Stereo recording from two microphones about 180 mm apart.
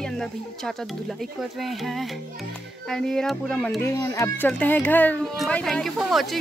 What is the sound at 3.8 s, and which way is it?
Speech, 20° left (ahead or behind).